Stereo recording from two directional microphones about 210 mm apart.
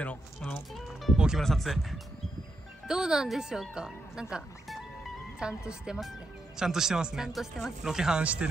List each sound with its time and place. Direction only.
0.0 s a woman's voice: 5° left (ahead or behind)